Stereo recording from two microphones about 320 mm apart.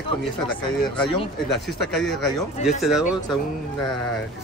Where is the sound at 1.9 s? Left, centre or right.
Centre.